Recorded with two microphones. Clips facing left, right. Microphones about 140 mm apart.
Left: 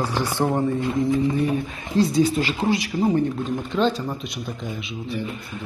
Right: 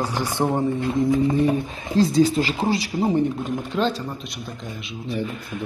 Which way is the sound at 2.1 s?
30° right (ahead or behind).